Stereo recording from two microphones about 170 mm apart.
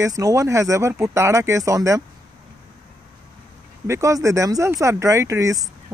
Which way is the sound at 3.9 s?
15° right (ahead or behind).